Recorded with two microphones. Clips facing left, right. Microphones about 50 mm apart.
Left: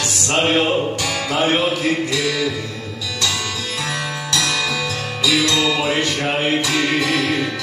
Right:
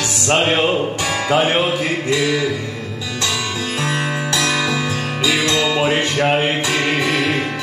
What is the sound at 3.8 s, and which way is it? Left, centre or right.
Music, right.